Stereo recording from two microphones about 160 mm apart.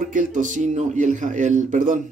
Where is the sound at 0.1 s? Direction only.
55° right (ahead or behind).